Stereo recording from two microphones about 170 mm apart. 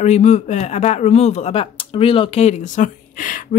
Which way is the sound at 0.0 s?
40° left (ahead or behind).